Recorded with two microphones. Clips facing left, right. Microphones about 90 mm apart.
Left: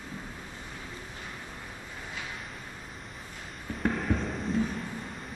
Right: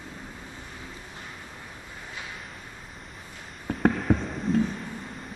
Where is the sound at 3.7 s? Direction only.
55° right (ahead or behind).